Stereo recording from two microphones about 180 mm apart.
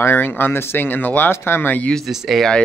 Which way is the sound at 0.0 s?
10° left (ahead or behind).